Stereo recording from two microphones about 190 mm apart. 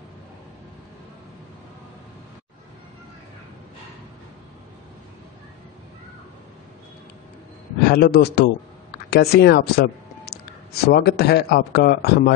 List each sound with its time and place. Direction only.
7.8 s speech: 55° left (ahead or behind)